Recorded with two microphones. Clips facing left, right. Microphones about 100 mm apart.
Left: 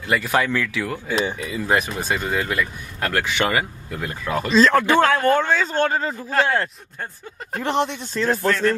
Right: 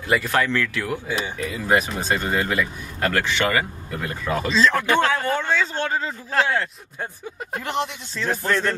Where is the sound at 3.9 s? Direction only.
Centre (ahead or behind).